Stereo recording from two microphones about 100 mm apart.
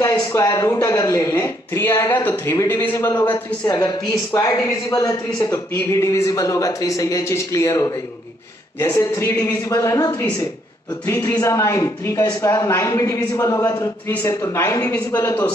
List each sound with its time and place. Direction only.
0.5 s a man's voice: 35° left (ahead or behind)
3.6 s a man's voice: 40° left (ahead or behind)